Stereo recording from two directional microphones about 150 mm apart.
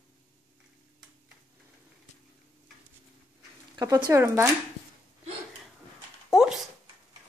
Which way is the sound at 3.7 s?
25° right (ahead or behind).